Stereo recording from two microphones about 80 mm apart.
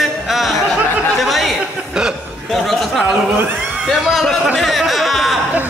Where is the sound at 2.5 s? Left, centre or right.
Centre.